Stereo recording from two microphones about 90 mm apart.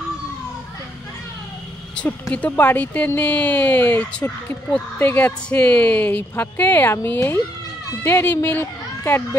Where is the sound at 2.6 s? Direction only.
20° left (ahead or behind).